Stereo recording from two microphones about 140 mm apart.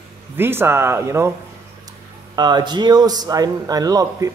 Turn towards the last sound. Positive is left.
turn(degrees=-25)  # may be behind; listen again after turning